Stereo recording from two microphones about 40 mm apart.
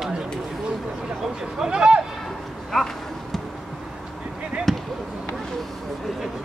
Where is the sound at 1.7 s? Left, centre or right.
Right.